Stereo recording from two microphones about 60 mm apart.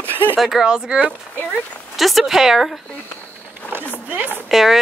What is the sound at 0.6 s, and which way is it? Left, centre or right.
Speech, centre.